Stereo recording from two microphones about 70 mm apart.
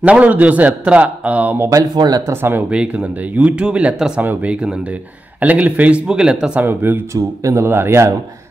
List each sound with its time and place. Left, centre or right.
0.0 s a man's voice: right
1.6 s speech: right
2.0 s speech: right
2.7 s speech: centre
6.6 s a man's voice: right
7.2 s speech: right
7.6 s a man's voice: right